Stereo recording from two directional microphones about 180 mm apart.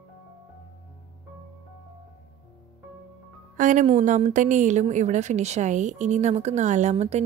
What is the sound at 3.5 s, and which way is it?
Music, 45° right (ahead or behind).